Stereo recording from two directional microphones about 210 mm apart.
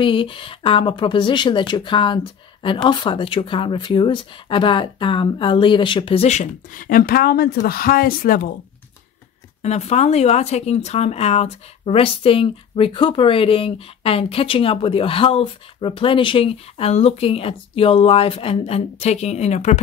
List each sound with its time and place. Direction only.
0.0 s speech: 25° left (ahead or behind); by 8.4 s 45° left (ahead or behind)
9.6 s speech: 30° left (ahead or behind)